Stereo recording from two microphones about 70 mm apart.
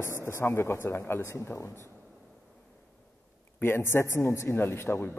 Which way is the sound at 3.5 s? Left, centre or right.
Left.